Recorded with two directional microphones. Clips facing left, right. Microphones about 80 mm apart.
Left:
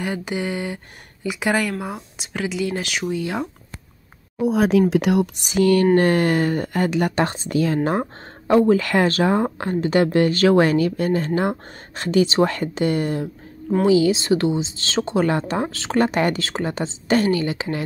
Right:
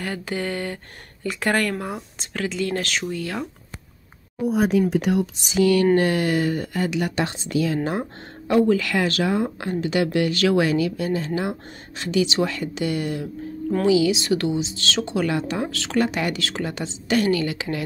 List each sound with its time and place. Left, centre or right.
0.0 s speech: centre
4.4 s speech: left
5.4 s speech: left